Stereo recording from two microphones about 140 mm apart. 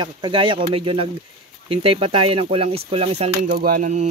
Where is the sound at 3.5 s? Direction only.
75° right (ahead or behind).